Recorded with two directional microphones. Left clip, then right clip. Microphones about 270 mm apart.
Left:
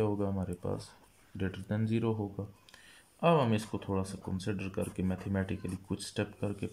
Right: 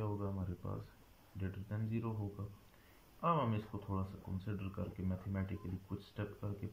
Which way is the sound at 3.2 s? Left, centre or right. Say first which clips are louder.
Left 8 dB; centre.